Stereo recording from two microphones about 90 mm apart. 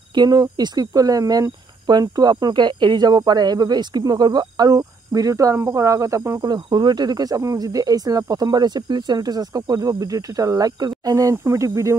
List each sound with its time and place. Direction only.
0.1 s speech: 50° right (ahead or behind)
6.4 s speech: 50° right (ahead or behind); by 11.9 s 35° right (ahead or behind)